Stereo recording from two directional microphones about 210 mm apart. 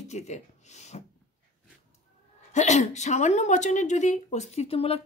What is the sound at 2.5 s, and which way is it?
Speech, 35° left (ahead or behind).